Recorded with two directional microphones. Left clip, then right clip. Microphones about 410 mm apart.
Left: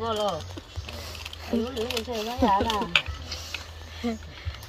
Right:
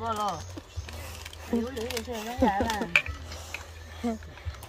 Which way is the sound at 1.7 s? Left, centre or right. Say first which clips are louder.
Left 4 dB; centre.